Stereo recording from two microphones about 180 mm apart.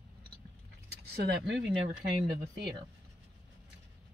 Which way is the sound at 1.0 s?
70° right (ahead or behind).